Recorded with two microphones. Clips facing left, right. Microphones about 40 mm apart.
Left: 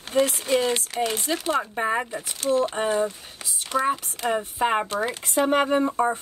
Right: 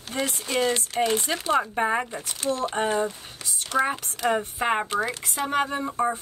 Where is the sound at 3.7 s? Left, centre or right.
Left.